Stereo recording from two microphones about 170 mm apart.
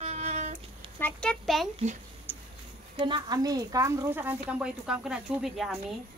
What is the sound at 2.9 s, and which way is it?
Speech, 25° right (ahead or behind).